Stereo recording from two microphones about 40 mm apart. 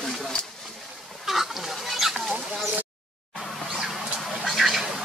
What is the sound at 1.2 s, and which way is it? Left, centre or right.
Fowl, centre.